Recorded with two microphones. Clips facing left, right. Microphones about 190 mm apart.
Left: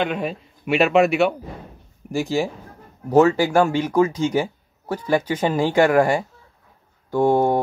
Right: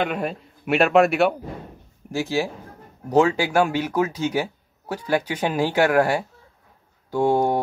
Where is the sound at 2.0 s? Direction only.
15° left (ahead or behind).